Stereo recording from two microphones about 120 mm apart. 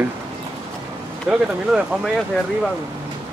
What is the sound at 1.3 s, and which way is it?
Speech, 5° right (ahead or behind).